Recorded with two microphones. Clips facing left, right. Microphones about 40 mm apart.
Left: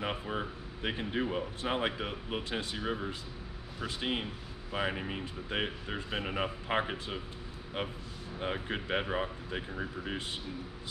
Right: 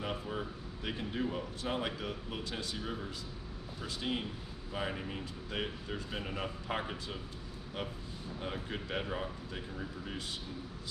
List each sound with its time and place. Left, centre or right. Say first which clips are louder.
0.0 s speech: left 3 dB; left
8.4 s speech: left 5 dB; left